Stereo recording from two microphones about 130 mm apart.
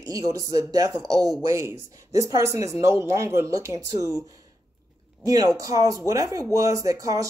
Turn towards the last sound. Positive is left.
turn(degrees=-25)  # may be behind; listen again after turning